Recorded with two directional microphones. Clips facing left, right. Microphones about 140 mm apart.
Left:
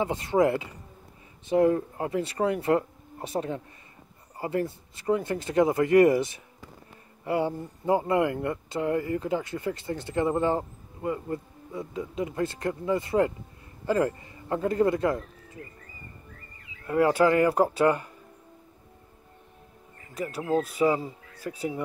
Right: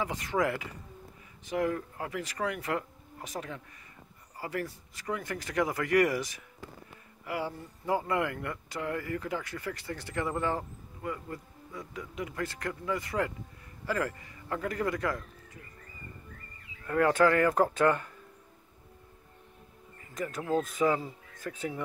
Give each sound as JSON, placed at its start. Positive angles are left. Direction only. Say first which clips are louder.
{"t": 0.0, "sound": "a man's voice", "louder": "left 7 dB", "side_deg": 25}
{"t": 16.8, "sound": "speech", "louder": "left 3 dB", "side_deg": 15}
{"t": 20.2, "sound": "speech", "louder": "left 3 dB", "side_deg": 10}